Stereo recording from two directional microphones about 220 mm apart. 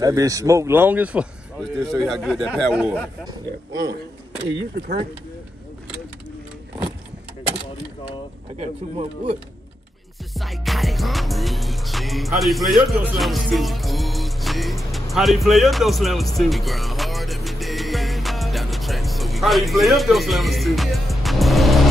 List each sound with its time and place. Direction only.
0.0 s speech: 15° right (ahead or behind)
4.5 s speech: 50° right (ahead or behind)
8.5 s speech: 25° right (ahead or behind)
10.3 s music: centre (ahead or behind)
15.1 s speech: centre (ahead or behind)
16.3 s music: centre (ahead or behind)